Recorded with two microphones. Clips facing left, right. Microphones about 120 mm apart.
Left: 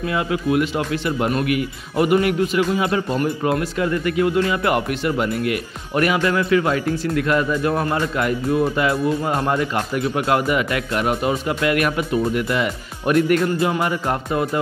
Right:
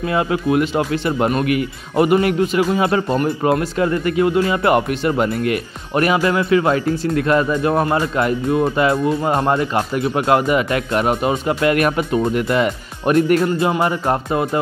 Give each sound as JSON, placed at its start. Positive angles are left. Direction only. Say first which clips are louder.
{"t": 0.1, "sound": "speech", "louder": "right 3 dB", "side_deg": -35}
{"t": 2.7, "sound": "speech", "louder": "right 3 dB", "side_deg": -40}
{"t": 3.2, "sound": "speech", "louder": "right 3 dB", "side_deg": -30}
{"t": 13.0, "sound": "speech", "louder": "right 2 dB", "side_deg": -30}
{"t": 13.7, "sound": "speech", "louder": "right 3 dB", "side_deg": -35}